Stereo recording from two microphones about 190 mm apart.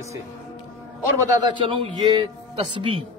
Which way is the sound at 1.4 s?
25° right (ahead or behind).